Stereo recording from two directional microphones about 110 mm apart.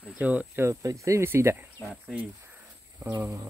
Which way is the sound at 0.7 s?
30° right (ahead or behind).